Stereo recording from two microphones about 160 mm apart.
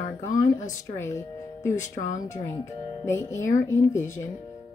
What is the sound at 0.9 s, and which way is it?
Speech, 15° left (ahead or behind).